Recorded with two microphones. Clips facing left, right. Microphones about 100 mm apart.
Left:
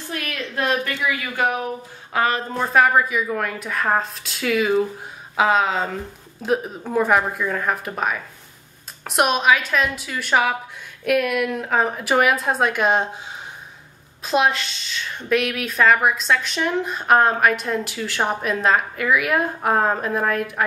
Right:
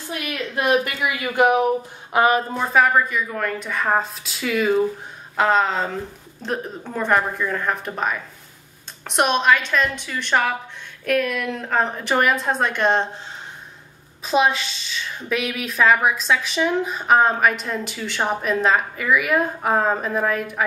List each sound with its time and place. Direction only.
0.1 s a woman's voice: 15° right (ahead or behind)
2.5 s a woman's voice: centre (ahead or behind)
14.2 s a woman's voice: centre (ahead or behind)